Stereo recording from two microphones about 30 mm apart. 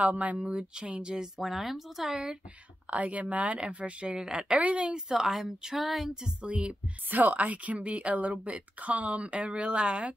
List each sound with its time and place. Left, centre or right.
0.0 s speech: right
0.5 s speech: right
1.4 s speech: centre
2.9 s speech: right
3.5 s speech: right
4.2 s speech: right
4.6 s speech: right
4.9 s speech: centre
5.8 s speech: centre
6.4 s speech: right
7.1 s speech: right
7.8 s speech: right